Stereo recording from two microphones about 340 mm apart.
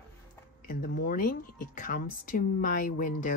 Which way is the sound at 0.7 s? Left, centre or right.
Left.